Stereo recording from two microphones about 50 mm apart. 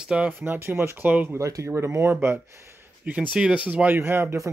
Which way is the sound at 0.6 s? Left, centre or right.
Right.